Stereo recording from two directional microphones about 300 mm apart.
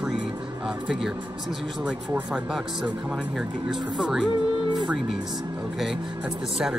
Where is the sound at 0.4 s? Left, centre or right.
Centre.